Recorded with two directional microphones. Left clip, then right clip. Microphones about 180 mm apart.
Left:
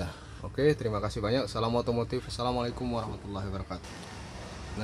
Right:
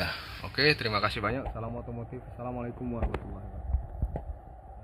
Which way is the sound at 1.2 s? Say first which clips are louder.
Left 4 dB; 15° left (ahead or behind).